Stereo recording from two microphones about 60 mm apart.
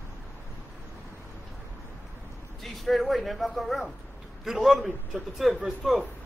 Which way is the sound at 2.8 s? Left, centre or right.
Centre.